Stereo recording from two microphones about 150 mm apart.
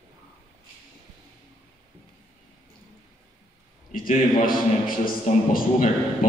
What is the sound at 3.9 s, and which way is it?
A man's voice, 65° left (ahead or behind).